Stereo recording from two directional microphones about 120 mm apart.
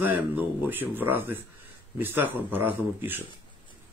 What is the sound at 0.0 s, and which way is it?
Speech, 15° right (ahead or behind).